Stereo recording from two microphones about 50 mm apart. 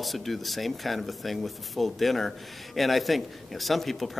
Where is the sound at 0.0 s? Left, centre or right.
Centre.